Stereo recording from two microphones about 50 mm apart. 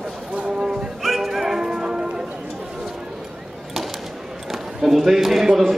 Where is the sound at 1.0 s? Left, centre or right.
Centre.